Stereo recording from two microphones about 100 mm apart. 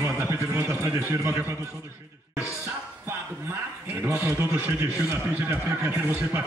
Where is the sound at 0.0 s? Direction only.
25° right (ahead or behind).